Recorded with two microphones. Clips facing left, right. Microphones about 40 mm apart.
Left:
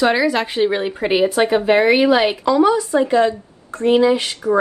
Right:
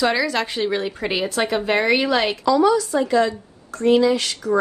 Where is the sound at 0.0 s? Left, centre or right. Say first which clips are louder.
Left 4 dB; centre.